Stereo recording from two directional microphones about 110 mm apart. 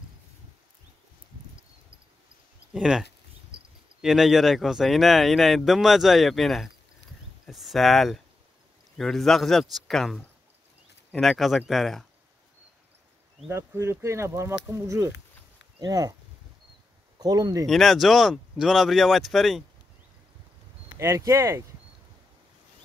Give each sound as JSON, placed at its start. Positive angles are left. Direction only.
{"t": 2.7, "sound": "speech", "side_deg": -5}
{"t": 13.5, "sound": "speech", "side_deg": -25}
{"t": 17.2, "sound": "speech", "side_deg": -35}
{"t": 17.6, "sound": "speech", "side_deg": 0}
{"t": 21.0, "sound": "speech", "side_deg": -30}